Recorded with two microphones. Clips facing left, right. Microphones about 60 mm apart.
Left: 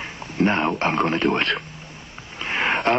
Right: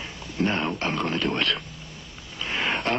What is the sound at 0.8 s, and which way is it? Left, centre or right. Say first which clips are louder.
Speech: left 6 dB; left.